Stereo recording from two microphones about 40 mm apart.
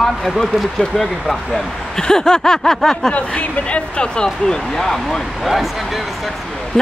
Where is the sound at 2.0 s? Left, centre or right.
Centre.